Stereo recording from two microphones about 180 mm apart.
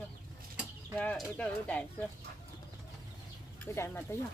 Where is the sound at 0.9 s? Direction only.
5° left (ahead or behind).